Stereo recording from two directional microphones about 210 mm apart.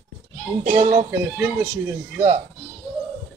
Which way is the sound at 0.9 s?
10° right (ahead or behind).